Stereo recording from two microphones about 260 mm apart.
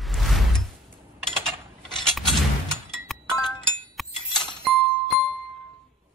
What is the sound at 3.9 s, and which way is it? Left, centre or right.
Music, centre.